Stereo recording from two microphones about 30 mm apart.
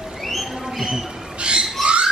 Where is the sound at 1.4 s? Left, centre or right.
Right.